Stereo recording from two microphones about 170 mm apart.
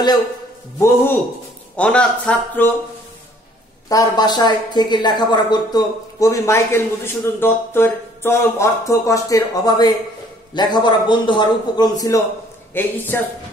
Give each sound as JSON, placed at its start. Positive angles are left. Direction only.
{"t": 0.7, "sound": "speech", "side_deg": 15}
{"t": 3.9, "sound": "a woman's voice", "side_deg": 20}